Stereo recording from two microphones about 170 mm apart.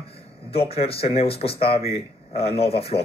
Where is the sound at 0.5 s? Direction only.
35° left (ahead or behind).